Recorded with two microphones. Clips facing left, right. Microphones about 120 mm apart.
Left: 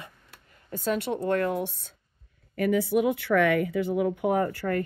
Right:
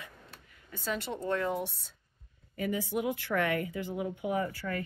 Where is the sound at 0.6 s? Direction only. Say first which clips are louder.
Left 8 dB; 50° left (ahead or behind); by 1.6 s 65° left (ahead or behind).